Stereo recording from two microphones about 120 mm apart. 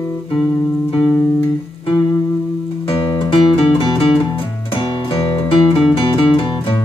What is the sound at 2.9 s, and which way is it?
Music, 50° left (ahead or behind).